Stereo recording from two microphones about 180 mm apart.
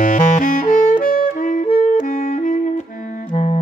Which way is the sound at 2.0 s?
45° left (ahead or behind).